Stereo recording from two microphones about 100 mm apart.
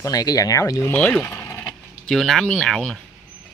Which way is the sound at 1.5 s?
25° left (ahead or behind).